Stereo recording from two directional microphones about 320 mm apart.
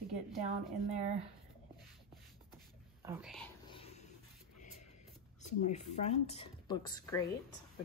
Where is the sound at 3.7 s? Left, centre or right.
Centre.